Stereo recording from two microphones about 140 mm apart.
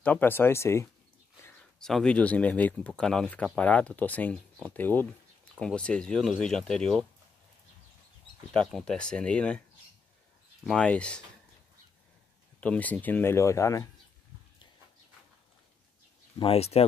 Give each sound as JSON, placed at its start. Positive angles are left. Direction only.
{"t": 0.0, "sound": "speech", "side_deg": 15}
{"t": 1.8, "sound": "speech", "side_deg": 5}
{"t": 8.5, "sound": "speech", "side_deg": 5}
{"t": 10.6, "sound": "speech", "side_deg": 5}
{"t": 12.5, "sound": "speech", "side_deg": 10}
{"t": 16.3, "sound": "speech", "side_deg": 45}